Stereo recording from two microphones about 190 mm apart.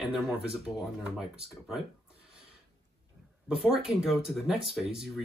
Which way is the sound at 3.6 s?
Centre (ahead or behind).